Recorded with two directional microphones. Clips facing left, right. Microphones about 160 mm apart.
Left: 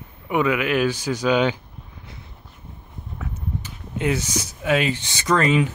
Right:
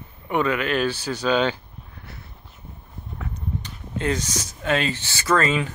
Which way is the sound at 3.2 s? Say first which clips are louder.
Even; 5° left (ahead or behind).